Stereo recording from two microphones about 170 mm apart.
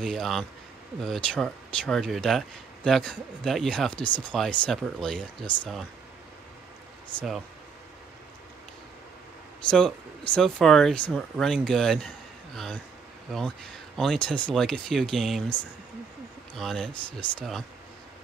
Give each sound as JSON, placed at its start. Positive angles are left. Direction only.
{"t": 0.0, "sound": "speech", "side_deg": 0}
{"t": 7.2, "sound": "speech", "side_deg": 0}
{"t": 9.7, "sound": "speech", "side_deg": 5}
{"t": 13.9, "sound": "speech", "side_deg": 5}
{"t": 16.5, "sound": "speech", "side_deg": 0}